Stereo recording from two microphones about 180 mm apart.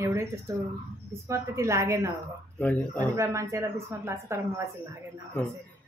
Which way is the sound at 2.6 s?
10° left (ahead or behind).